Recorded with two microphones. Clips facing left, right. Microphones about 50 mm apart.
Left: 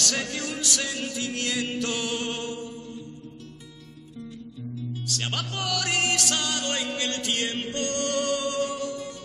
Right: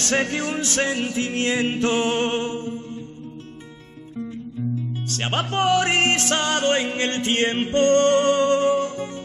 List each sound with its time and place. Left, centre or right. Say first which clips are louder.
0.0 s music: right 7 dB; right
4.2 s music: right 9 dB; right